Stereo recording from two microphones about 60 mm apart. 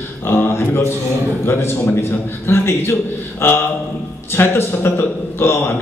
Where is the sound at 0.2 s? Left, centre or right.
Left.